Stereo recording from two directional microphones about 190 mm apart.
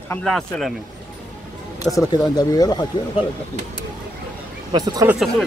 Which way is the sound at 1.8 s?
20° left (ahead or behind).